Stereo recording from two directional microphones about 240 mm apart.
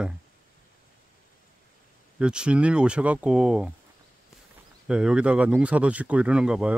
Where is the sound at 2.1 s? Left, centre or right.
Centre.